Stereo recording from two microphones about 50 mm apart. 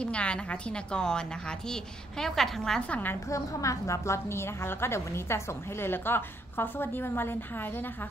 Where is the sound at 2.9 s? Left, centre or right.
Left.